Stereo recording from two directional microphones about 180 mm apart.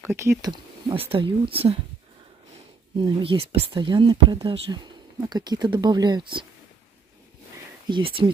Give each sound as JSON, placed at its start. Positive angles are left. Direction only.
{"t": 0.0, "sound": "speech", "side_deg": -15}
{"t": 3.0, "sound": "speech", "side_deg": -30}
{"t": 7.9, "sound": "speech", "side_deg": -30}